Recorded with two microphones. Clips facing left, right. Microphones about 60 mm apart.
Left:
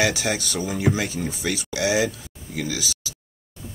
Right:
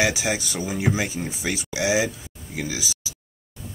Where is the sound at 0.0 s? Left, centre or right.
Centre.